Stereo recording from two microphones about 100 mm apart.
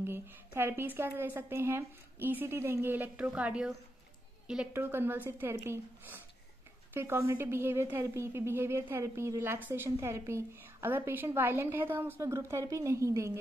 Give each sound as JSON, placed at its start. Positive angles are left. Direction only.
{"t": 0.0, "sound": "a woman's voice", "side_deg": -25}
{"t": 4.7, "sound": "a woman's voice", "side_deg": -20}